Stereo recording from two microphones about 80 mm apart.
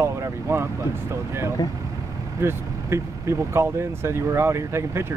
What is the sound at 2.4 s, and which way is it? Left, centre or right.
Speech, right.